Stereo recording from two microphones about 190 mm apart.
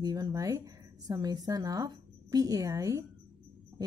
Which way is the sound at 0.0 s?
20° right (ahead or behind).